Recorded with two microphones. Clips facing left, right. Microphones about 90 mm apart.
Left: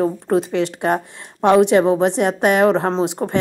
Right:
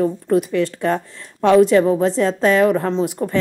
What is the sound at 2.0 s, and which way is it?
Speech, 70° left (ahead or behind).